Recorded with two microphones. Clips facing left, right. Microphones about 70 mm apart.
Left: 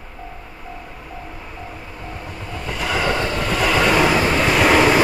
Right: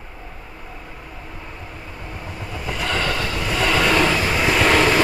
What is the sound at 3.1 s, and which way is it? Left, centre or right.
Train, left.